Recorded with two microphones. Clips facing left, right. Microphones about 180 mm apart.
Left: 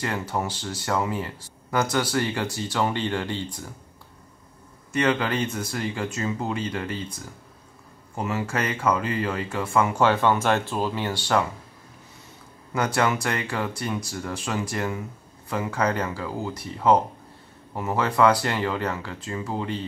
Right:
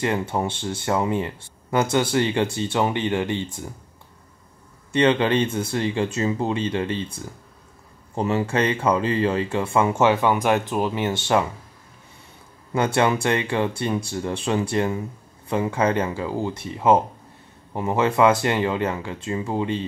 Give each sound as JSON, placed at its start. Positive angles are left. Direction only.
{"t": 0.0, "sound": "speech", "side_deg": -25}
{"t": 4.9, "sound": "speech", "side_deg": -25}
{"t": 12.7, "sound": "speech", "side_deg": -25}